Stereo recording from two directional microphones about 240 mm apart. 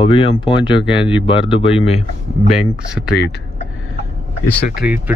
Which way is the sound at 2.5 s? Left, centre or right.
Centre.